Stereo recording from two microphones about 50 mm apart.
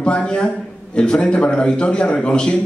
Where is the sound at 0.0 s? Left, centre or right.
Left.